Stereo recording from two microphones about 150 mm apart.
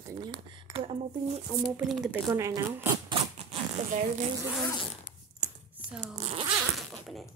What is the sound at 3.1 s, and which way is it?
Rodents, 35° right (ahead or behind).